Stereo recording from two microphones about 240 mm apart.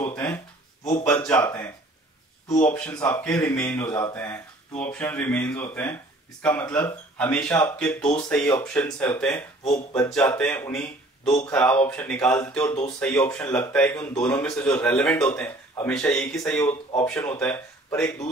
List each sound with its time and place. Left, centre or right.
0.0 s speech: centre
2.7 s speech: centre